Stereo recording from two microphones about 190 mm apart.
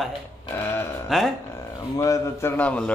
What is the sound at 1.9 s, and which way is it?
Speech, 15° left (ahead or behind).